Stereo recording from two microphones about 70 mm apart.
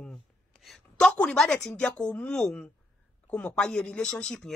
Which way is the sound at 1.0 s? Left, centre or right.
Centre.